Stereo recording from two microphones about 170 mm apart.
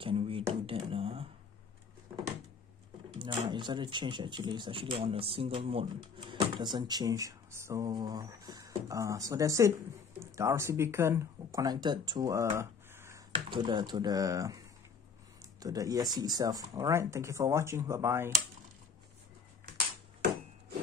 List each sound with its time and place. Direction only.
0.0 s speech: 35° right (ahead or behind)
0.7 s a sound: 35° right (ahead or behind)
3.2 s speech: 25° right (ahead or behind)
12.5 s a sound: 15° right (ahead or behind)
13.5 s speech: 25° right (ahead or behind)
15.6 s speech: 20° right (ahead or behind)